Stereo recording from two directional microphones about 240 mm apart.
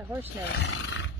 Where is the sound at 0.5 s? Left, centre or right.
Left.